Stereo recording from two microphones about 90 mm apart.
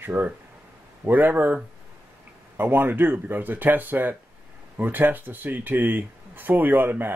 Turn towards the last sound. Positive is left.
turn(degrees=-25)  # may be behind; listen again after turning